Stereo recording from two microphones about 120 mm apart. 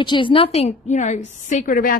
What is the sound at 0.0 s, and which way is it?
A woman's voice, 40° left (ahead or behind).